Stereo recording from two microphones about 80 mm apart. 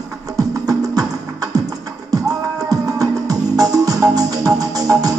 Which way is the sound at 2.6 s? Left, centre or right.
Right.